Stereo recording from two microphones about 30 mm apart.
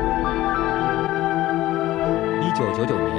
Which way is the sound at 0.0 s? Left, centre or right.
Centre.